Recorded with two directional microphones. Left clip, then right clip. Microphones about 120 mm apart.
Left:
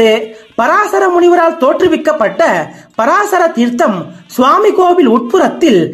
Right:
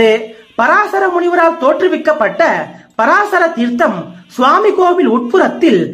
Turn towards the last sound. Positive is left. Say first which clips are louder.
# left 1 dB
turn(degrees=40)  # may be behind; listen again after turning